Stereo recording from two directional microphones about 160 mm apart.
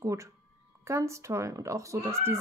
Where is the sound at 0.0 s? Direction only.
20° right (ahead or behind).